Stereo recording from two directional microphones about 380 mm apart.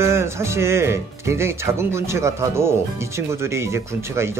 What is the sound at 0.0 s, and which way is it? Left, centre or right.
Speech, centre.